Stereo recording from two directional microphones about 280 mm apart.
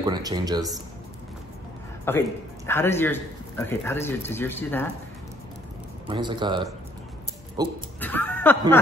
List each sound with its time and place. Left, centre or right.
0.0 s speech: centre
2.0 s a man's voice: centre
6.0 s speech: centre
8.0 s speech: centre